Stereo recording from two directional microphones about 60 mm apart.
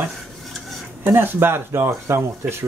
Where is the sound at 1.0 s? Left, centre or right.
Right.